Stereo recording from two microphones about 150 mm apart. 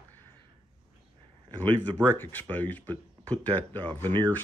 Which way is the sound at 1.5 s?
35° right (ahead or behind).